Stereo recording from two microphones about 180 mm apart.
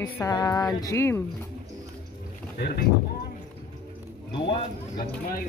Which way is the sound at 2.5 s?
55° left (ahead or behind).